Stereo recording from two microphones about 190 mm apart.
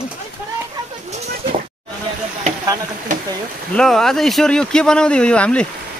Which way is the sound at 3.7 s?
Centre (ahead or behind).